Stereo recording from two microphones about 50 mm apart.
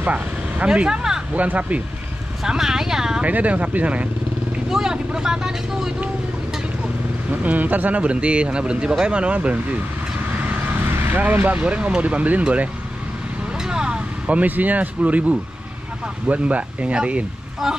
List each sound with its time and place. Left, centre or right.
0.0 s vehicle: right
0.8 s a sound: centre
1.3 s speech: right
2.4 s speech: centre
3.2 s speech: right
4.6 s speech: centre
7.2 s speech: right
10.3 s vehicle: right
11.6 s speech: right
13.6 s vehicle: centre
14.2 s speech: right
17.6 s speech: centre